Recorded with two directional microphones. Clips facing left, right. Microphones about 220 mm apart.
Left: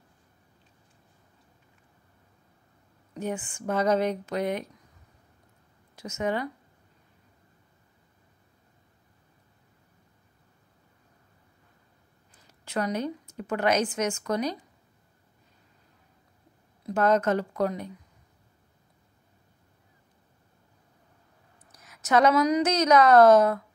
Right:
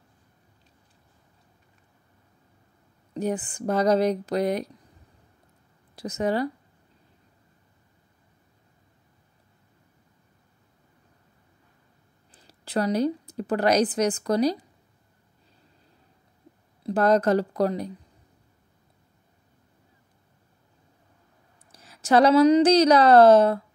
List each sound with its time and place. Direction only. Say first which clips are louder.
3.2 s a woman's voice: right 5 dB; 35° right (ahead or behind)
5.9 s a woman's voice: right 4 dB; 35° right (ahead or behind)
12.3 s a woman's voice: right 4 dB; 35° right (ahead or behind)
16.8 s a woman's voice: right 3 dB; 35° right (ahead or behind)
21.7 s a woman's voice: right 4 dB; 30° right (ahead or behind)